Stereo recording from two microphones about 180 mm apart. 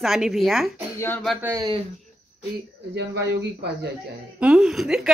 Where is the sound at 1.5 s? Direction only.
20° right (ahead or behind).